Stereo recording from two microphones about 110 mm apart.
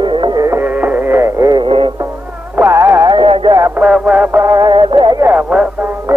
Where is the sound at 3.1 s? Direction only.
50° right (ahead or behind).